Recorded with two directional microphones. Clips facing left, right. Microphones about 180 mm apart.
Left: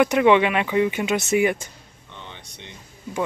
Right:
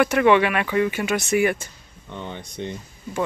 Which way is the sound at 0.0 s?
15° left (ahead or behind).